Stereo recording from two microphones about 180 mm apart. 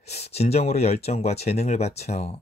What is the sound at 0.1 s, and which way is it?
Speech, 35° left (ahead or behind).